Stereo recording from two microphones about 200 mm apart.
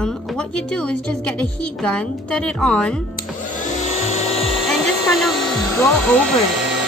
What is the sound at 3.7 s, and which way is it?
Tools, 35° left (ahead or behind).